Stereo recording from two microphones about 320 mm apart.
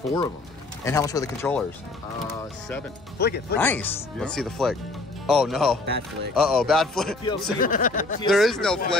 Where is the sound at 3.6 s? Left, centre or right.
Centre.